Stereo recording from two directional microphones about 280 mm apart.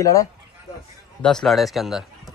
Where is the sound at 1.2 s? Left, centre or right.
Centre.